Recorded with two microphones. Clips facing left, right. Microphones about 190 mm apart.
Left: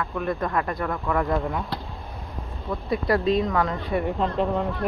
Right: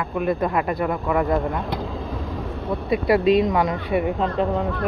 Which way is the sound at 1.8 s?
90° right.